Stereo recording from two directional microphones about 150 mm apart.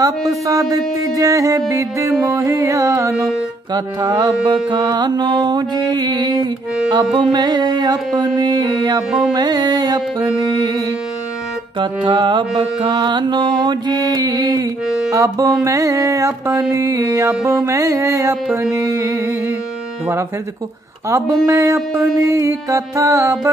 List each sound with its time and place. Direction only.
0.0 s carnatic music: 25° right (ahead or behind)
11.8 s carnatic music: 35° right (ahead or behind)
18.6 s music: 15° right (ahead or behind)
21.1 s carnatic music: 20° right (ahead or behind)